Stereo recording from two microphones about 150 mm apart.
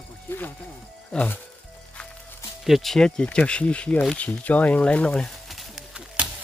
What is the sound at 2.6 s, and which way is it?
Speech, centre (ahead or behind).